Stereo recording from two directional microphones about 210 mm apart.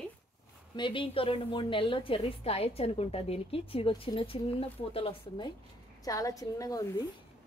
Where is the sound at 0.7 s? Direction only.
25° left (ahead or behind).